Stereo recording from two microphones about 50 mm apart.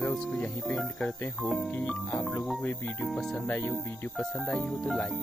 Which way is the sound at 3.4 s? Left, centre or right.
Left.